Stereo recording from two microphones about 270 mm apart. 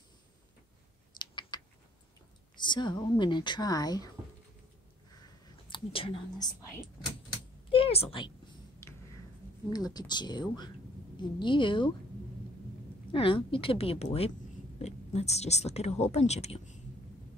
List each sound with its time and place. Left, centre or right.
1.1 s typing: centre
2.5 s speech: centre
5.7 s speech: centre
7.7 s a woman's voice: left
9.7 s speech: centre
13.1 s speech: centre